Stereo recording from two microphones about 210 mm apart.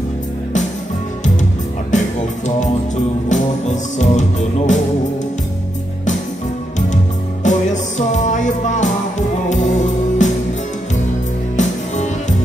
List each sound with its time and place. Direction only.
1.9 s music: 35° left (ahead or behind)
7.4 s music: 35° left (ahead or behind)
11.5 s music: 35° left (ahead or behind)